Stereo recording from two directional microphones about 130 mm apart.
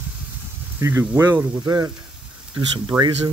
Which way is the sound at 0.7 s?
20° right (ahead or behind).